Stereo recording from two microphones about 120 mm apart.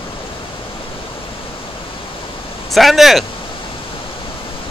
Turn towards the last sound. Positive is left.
turn(degrees=0)  # may be behind; listen again after turning